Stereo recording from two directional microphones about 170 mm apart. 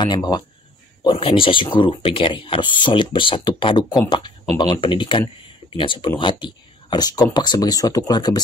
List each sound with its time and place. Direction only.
0.0 s speech: 25° left (ahead or behind)